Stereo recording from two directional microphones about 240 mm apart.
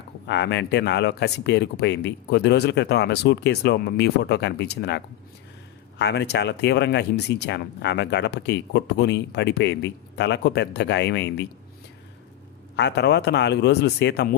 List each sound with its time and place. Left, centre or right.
0.3 s speech: left
12.7 s speech: left